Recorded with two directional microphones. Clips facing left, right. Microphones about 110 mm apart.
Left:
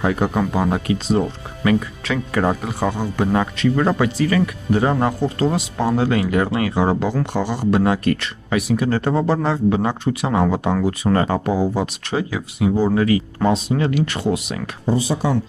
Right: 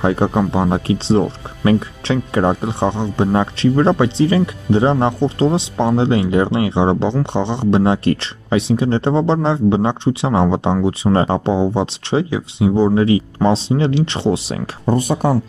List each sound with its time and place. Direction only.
0.0 s speech: 25° right (ahead or behind)
14.9 s speech: 55° right (ahead or behind)